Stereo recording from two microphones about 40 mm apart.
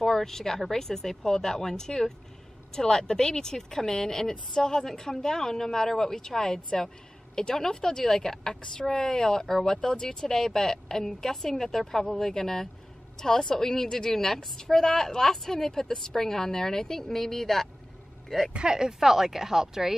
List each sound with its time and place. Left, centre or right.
0.0 s a woman's voice: centre
18.5 s speech: centre